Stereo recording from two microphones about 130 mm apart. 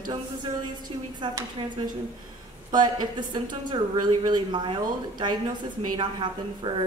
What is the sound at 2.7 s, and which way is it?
A woman's voice, 35° right (ahead or behind).